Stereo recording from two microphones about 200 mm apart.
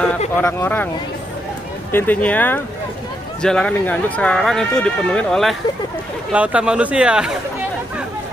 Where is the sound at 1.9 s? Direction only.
10° left (ahead or behind).